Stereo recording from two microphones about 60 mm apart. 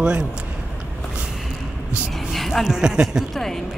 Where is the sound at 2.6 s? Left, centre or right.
Centre.